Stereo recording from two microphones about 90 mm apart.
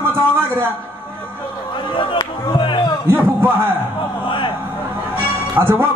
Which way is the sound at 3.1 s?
25° right (ahead or behind).